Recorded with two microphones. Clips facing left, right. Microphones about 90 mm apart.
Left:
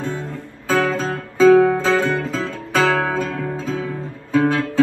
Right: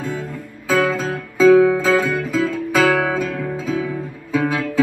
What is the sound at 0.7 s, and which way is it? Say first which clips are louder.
Music: right 1 dB; 30° left (ahead or behind).